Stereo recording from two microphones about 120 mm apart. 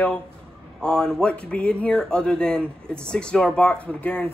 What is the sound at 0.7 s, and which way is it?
Speech, 5° left (ahead or behind).